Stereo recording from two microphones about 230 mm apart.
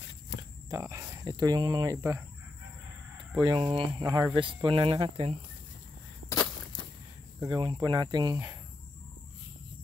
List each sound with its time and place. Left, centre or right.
0.4 s speech: centre
3.4 s speech: right
7.3 s speech: centre